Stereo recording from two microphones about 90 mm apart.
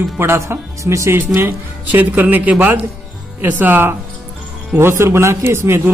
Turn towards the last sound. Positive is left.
turn(degrees=-30)  # may be behind; listen again after turning